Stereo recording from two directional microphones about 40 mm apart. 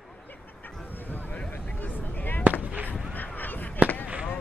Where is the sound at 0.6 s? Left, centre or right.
Left.